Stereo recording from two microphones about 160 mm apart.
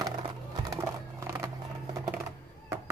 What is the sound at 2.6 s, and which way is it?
Chop, 20° right (ahead or behind).